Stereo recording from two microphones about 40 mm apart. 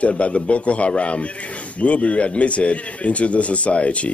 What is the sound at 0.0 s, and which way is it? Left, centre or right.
A man's voice, left.